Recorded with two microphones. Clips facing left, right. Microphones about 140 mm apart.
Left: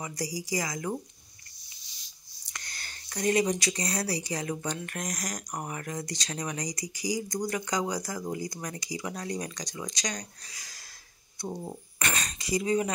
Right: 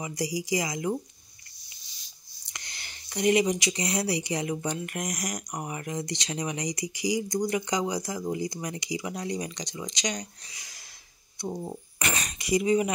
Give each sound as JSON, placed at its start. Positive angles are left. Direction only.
{"t": 0.4, "sound": "speech", "side_deg": -20}
{"t": 2.7, "sound": "speech", "side_deg": -15}